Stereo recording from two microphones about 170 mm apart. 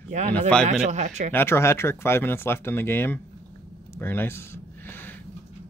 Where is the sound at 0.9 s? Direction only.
45° right (ahead or behind).